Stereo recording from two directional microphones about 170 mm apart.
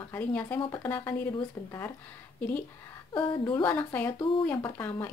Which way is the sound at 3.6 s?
10° left (ahead or behind).